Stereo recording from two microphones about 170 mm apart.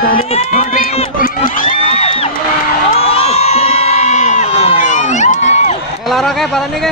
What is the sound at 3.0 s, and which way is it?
Crowd, 35° left (ahead or behind).